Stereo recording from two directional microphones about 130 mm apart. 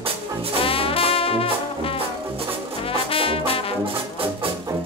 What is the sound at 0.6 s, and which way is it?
Brass instrument, 45° left (ahead or behind).